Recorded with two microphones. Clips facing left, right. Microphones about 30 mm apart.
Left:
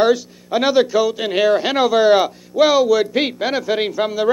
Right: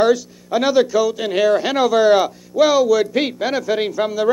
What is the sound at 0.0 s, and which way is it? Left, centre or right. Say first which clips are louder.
A man's voice: even; left.